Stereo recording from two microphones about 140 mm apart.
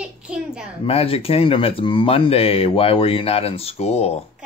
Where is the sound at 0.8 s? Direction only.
45° left (ahead or behind).